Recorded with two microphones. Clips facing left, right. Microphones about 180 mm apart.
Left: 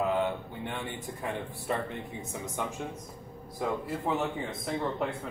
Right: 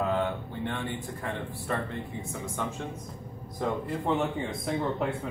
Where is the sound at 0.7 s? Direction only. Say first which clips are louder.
Right 3 dB; 20° left (ahead or behind).